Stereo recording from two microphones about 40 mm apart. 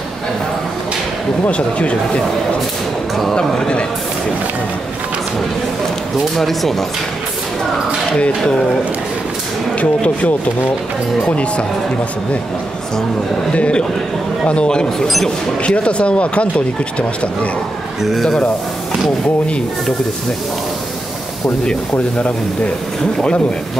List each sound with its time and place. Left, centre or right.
1.5 s speech: left
6.3 s speech: centre
9.8 s speech: left
13.6 s speech: left
18.0 s speech: centre